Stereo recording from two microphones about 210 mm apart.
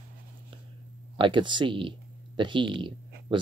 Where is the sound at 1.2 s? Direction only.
20° right (ahead or behind).